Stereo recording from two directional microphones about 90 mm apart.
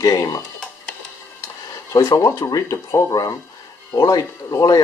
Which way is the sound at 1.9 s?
45° left (ahead or behind).